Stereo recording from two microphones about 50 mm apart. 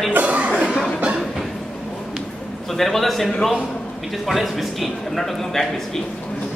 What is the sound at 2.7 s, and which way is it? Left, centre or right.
A man's voice, centre.